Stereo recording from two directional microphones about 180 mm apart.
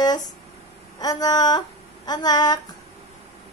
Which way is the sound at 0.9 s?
20° left (ahead or behind).